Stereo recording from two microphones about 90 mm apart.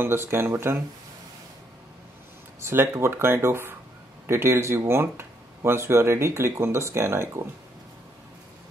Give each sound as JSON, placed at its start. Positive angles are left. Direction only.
{"t": 0.0, "sound": "speech", "side_deg": -25}
{"t": 2.6, "sound": "speech", "side_deg": -30}